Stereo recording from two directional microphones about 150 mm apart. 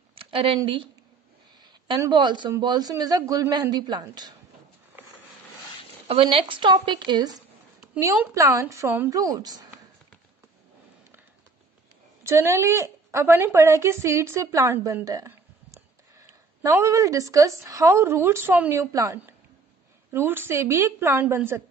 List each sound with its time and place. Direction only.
0.2 s a sound: 35° right (ahead or behind)
0.6 s a woman's voice: 35° right (ahead or behind)
6.0 s a woman's voice: 35° right (ahead or behind)
8.4 s a man's voice: 20° right (ahead or behind)
12.2 s a woman's voice: 20° right (ahead or behind)